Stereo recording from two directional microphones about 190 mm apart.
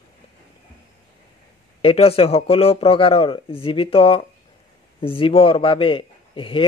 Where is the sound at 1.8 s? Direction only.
30° left (ahead or behind).